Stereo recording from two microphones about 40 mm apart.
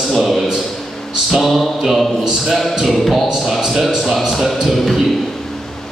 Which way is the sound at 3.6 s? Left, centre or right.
Centre.